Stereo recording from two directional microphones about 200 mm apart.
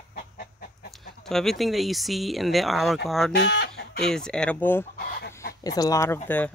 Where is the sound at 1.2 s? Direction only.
Centre (ahead or behind).